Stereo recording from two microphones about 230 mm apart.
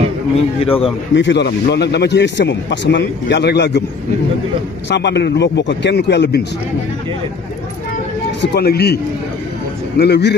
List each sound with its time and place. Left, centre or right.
0.6 s a man's voice: left
1.1 s a man's voice: left
4.8 s a man's voice: left
8.4 s a man's voice: left